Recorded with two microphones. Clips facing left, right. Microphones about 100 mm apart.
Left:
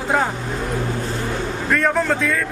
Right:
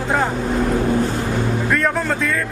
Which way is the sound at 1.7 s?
Centre (ahead or behind).